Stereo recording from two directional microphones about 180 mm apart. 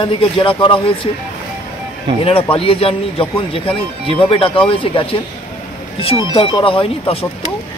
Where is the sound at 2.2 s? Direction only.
30° left (ahead or behind).